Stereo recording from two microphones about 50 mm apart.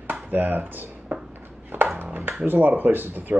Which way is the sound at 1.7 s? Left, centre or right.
Right.